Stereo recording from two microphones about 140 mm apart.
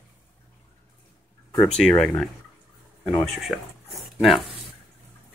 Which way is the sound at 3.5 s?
5° left (ahead or behind).